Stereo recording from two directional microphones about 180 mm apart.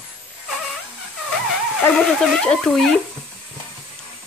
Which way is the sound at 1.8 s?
5° left (ahead or behind).